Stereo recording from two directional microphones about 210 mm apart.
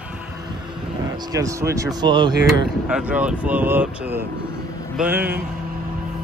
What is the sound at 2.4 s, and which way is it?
Speech, 5° right (ahead or behind).